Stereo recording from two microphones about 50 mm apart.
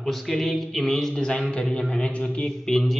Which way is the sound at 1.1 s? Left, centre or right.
Centre.